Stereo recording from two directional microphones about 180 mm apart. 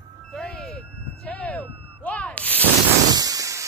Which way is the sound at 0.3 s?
Centre (ahead or behind).